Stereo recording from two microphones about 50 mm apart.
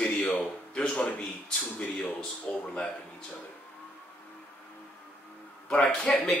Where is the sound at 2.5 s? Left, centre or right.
Left.